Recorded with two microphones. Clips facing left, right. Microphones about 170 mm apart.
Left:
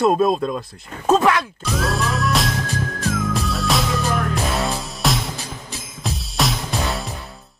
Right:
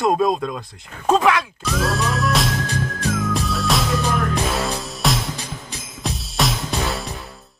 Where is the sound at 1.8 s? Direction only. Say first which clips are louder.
Even; centre (ahead or behind).